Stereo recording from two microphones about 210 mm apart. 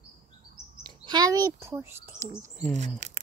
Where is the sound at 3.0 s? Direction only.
40° right (ahead or behind).